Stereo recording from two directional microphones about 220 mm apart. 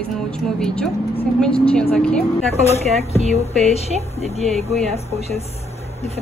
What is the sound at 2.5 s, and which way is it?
A woman's voice, 30° left (ahead or behind).